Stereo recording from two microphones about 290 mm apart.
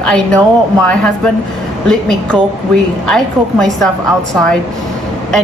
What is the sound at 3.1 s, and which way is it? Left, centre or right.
A woman's voice, centre.